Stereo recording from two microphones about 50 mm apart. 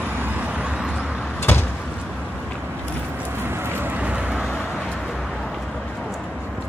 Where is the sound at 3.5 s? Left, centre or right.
Right.